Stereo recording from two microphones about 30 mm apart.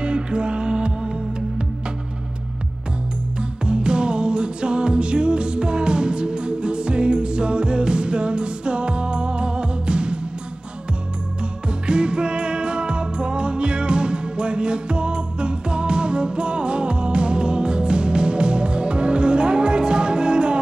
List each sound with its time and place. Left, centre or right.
0.0 s music: right
3.6 s music: right
11.8 s music: right